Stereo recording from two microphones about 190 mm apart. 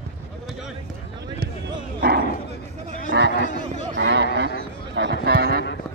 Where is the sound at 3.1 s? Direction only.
70° right (ahead or behind).